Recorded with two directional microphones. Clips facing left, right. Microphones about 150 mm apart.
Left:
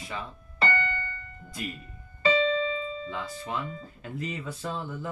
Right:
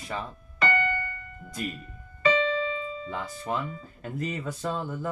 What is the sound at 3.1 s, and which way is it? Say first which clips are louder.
Speech: right 2 dB; 45° right (ahead or behind).